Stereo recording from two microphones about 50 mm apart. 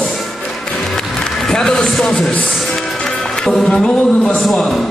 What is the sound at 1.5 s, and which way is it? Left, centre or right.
Speech, centre.